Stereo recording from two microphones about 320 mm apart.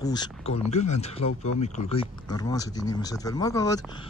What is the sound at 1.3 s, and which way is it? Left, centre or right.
Speech, left.